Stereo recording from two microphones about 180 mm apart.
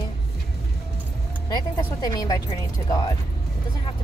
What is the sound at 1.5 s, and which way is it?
Speech, 20° left (ahead or behind).